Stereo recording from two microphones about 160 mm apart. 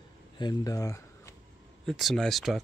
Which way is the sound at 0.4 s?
25° left (ahead or behind).